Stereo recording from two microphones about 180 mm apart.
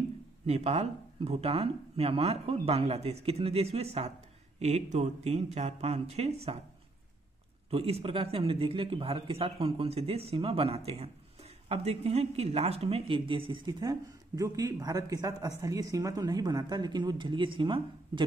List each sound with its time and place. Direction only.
0.5 s speech: 35° right (ahead or behind)
7.7 s a man's voice: 35° right (ahead or behind)